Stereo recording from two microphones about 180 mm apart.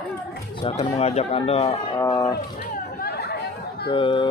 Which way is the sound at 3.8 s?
30° left (ahead or behind).